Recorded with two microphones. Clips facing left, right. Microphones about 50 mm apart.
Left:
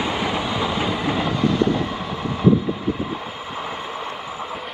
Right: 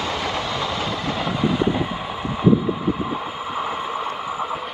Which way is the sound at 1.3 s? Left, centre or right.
Centre.